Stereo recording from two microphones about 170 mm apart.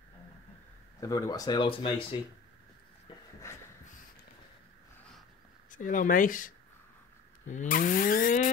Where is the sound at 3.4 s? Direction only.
15° left (ahead or behind).